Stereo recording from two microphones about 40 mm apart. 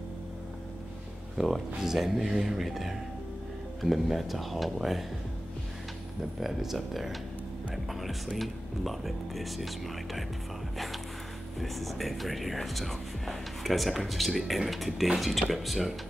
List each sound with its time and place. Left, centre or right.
1.4 s speech: centre
6.4 s speech: centre
7.7 s music: centre
8.4 s speech: centre
11.6 s speech: centre